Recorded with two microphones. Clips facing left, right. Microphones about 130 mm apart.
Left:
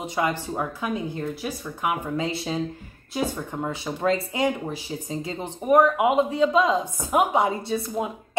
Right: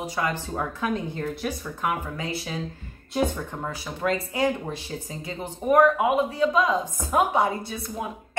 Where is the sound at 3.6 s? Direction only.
25° left (ahead or behind).